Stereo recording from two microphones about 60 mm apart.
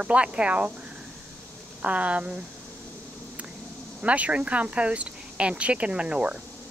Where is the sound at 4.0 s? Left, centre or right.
Right.